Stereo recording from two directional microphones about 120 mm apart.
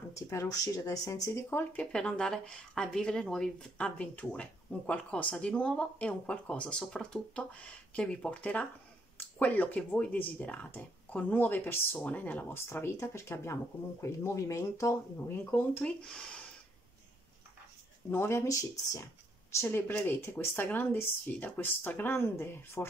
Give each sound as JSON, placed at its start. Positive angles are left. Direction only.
{"t": 0.1, "sound": "speech", "side_deg": 25}
{"t": 15.5, "sound": "speech", "side_deg": 10}
{"t": 18.1, "sound": "speech", "side_deg": 20}